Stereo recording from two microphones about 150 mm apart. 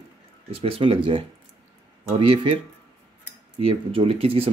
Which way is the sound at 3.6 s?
40° right (ahead or behind).